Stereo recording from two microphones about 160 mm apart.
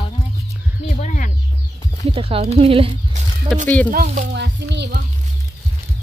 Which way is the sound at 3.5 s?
5° left (ahead or behind).